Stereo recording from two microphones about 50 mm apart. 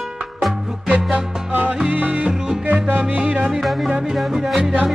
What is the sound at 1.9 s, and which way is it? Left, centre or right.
Music, right.